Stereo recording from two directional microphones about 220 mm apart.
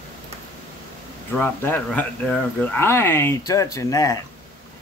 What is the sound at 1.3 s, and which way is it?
Speech, 5° left (ahead or behind).